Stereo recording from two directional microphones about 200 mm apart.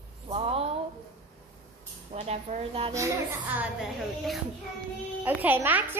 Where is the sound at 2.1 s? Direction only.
35° right (ahead or behind).